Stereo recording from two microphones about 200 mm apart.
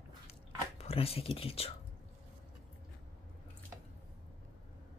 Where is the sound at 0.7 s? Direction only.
30° left (ahead or behind).